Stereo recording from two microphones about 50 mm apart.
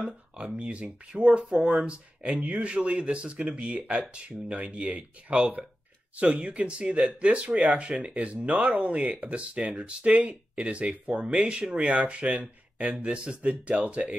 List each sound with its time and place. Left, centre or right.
0.4 s speech: right